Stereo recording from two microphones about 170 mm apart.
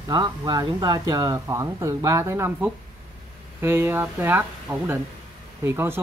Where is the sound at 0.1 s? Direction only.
25° right (ahead or behind).